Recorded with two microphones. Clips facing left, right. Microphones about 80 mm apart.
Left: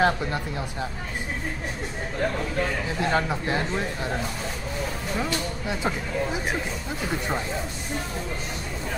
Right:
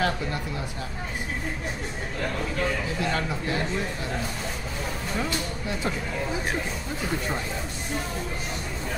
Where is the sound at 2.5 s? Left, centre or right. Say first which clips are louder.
Left 1 dB; left.